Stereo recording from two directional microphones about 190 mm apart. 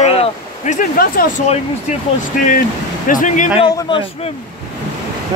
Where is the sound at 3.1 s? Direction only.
40° left (ahead or behind).